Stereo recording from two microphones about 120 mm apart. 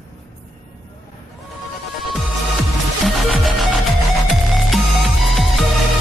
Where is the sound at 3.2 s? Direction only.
Centre (ahead or behind).